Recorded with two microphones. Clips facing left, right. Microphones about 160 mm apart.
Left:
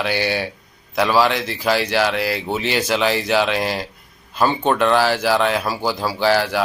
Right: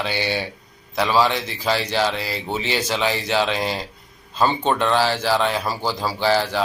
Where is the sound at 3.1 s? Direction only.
10° left (ahead or behind).